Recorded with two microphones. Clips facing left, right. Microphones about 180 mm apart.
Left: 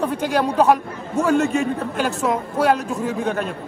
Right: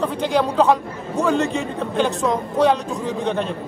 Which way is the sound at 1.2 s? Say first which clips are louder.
Left 2 dB; 15° right (ahead or behind).